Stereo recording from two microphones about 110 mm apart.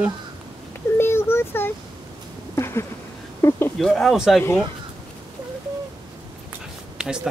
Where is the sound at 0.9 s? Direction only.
20° left (ahead or behind).